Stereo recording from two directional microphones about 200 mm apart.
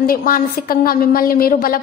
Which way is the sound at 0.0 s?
45° left (ahead or behind).